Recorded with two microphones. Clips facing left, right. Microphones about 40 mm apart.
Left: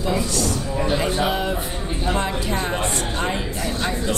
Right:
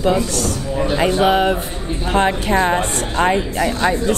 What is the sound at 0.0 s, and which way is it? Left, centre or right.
Speech, right.